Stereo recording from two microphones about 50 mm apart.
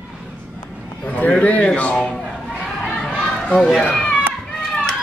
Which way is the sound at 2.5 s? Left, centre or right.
Left.